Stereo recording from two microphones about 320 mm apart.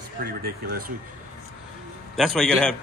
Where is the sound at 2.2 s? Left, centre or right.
Centre.